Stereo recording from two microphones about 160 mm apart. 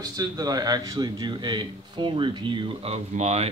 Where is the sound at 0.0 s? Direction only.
25° right (ahead or behind).